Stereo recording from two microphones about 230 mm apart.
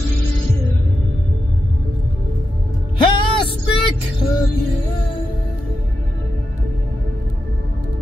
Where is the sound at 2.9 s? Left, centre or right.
Left.